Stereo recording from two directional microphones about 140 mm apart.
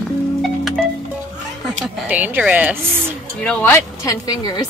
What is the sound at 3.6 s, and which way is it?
Speech, 15° left (ahead or behind).